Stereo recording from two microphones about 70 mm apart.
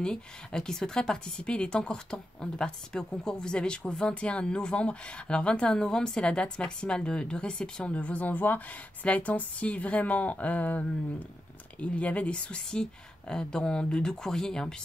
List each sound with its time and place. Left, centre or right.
0.0 s speech: centre
11.8 s speech: centre